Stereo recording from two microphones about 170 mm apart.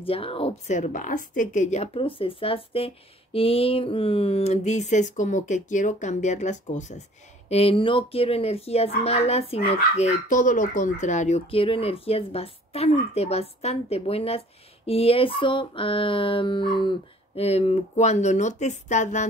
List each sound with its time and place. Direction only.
0.0 s speech: 35° left (ahead or behind)